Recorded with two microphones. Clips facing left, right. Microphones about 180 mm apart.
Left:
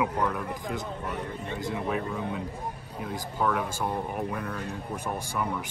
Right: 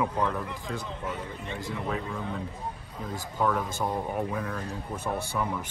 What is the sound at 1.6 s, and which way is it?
Speech, 15° left (ahead or behind).